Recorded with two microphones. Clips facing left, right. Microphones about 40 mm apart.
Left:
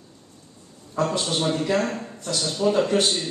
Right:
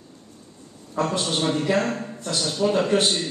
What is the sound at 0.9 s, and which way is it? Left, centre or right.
A man's voice, centre.